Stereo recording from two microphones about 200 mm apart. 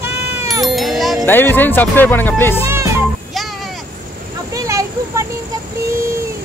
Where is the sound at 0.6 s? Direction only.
Centre (ahead or behind).